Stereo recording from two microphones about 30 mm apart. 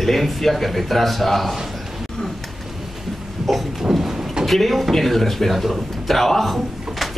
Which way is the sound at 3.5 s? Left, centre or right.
Centre.